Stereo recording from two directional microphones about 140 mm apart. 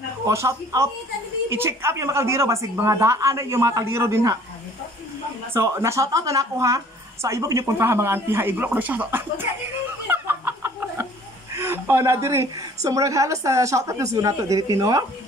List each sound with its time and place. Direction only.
0.3 s a woman's voice: 20° right (ahead or behind)
5.5 s a woman's voice: 20° right (ahead or behind)
10.0 s chicken: 15° right (ahead or behind)
11.5 s a woman's voice: 15° right (ahead or behind)